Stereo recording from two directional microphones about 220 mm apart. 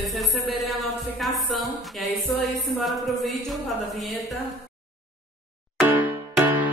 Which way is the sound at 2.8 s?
Centre (ahead or behind).